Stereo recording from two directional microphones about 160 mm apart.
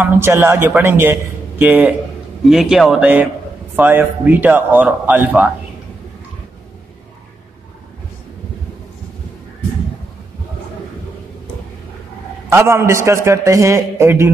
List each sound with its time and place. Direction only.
0.0 s a man's voice: 15° right (ahead or behind)
12.4 s a man's voice: 15° right (ahead or behind)